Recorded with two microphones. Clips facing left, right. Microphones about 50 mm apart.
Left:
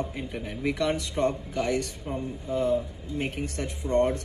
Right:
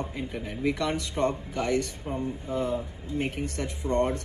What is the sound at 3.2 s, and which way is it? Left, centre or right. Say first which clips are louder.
Speech: right 1 dB; left.